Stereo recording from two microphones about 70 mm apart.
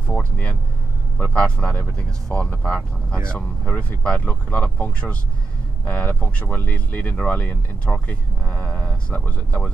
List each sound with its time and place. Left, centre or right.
0.0 s speech: centre